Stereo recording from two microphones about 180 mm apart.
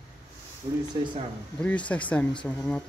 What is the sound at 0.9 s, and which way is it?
Speech, 20° right (ahead or behind).